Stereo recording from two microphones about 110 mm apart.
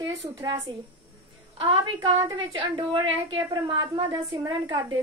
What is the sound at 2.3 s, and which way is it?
A woman's voice, 50° right (ahead or behind).